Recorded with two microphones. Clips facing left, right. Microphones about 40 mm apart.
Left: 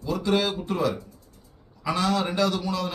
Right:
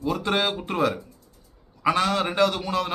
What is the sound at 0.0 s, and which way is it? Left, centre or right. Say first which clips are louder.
A man's voice: even; right.